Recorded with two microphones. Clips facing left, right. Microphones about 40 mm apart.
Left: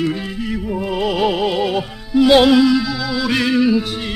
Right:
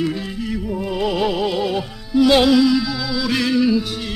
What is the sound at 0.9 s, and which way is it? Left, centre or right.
Music, left.